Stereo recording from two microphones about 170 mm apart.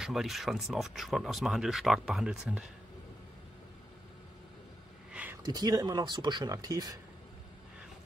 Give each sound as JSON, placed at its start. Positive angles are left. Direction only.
{"t": 0.0, "sound": "speech", "side_deg": 0}
{"t": 5.4, "sound": "speech", "side_deg": -25}